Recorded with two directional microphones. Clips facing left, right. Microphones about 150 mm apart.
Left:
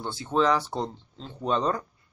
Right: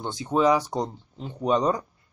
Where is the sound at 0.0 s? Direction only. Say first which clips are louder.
Right 2 dB; 15° right (ahead or behind).